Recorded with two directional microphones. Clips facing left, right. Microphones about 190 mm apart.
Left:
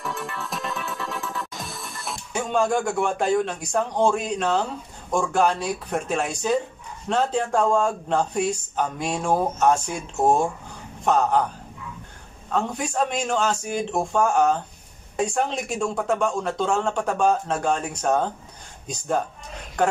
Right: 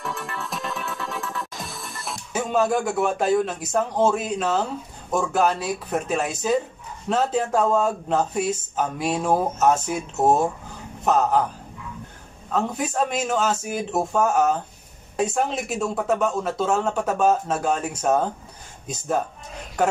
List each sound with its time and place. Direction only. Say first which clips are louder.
0.0 s music: even; centre (ahead or behind)
5.1 s speech: even; 5° right (ahead or behind)
12.4 s speech: right 1 dB; 5° right (ahead or behind)